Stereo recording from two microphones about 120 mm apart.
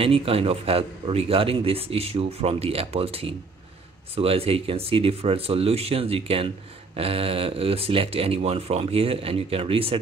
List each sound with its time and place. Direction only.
0.0 s a man's voice: 50° right (ahead or behind)